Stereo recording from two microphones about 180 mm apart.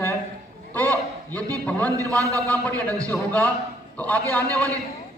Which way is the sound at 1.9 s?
20° right (ahead or behind).